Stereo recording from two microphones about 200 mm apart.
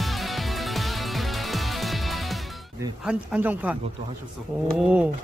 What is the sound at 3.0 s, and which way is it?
Speech, 5° right (ahead or behind).